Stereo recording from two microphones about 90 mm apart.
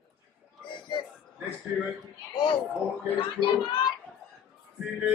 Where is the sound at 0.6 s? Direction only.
60° left (ahead or behind).